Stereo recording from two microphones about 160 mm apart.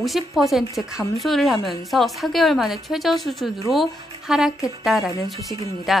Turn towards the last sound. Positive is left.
turn(degrees=0)  # may be behind; listen again after turning